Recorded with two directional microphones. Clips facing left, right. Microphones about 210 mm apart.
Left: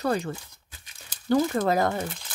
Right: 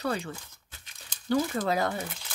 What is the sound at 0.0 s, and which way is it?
Speech, 40° left (ahead or behind).